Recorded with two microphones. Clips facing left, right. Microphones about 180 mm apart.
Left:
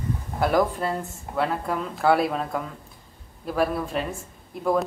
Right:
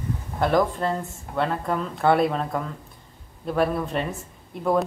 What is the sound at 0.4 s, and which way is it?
A woman's voice, 5° left (ahead or behind).